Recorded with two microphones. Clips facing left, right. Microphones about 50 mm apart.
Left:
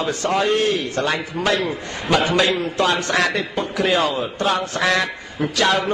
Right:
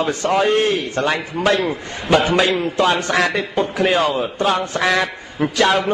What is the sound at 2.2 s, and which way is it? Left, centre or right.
A man's voice, right.